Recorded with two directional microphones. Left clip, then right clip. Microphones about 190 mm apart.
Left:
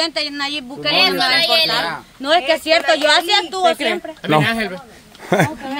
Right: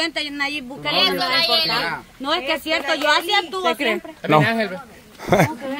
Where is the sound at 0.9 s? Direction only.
60° left (ahead or behind).